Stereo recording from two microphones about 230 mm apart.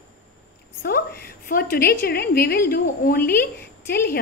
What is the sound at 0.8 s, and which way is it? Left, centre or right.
A woman's voice, left.